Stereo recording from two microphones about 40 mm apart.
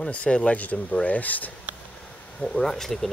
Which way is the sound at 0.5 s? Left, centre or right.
Left.